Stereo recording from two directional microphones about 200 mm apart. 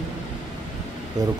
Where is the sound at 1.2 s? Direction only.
20° right (ahead or behind).